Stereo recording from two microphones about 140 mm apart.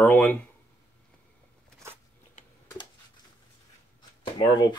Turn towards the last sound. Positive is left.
turn(degrees=30)  # may be behind; listen again after turning